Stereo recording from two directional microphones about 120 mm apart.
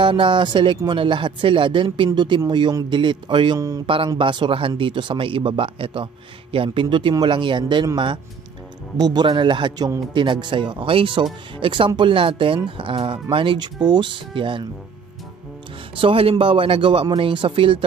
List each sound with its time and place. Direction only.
0.0 s speech: 45° right (ahead or behind)
3.5 s speech: 30° right (ahead or behind)
3.8 s speech: 50° right (ahead or behind)
16.0 s speech: 50° right (ahead or behind)